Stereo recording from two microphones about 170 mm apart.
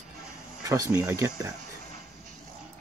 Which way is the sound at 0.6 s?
20° right (ahead or behind).